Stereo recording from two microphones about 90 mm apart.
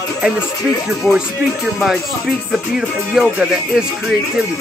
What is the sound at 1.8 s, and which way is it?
Music, centre (ahead or behind).